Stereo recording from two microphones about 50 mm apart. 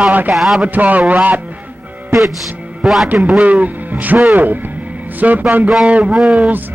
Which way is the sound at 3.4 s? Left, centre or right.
Right.